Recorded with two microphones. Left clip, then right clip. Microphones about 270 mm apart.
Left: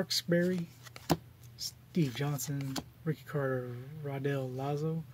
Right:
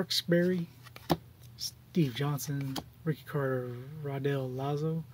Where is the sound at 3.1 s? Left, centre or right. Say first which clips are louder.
Right 2 dB; centre.